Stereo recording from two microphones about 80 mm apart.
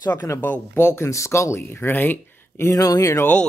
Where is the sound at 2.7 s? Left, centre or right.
Left.